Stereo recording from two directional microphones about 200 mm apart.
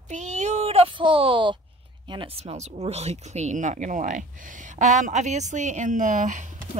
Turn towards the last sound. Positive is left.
turn(degrees=-40)  # may be behind; listen again after turning